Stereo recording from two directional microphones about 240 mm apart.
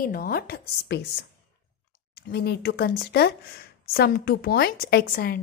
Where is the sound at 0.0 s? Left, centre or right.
Left.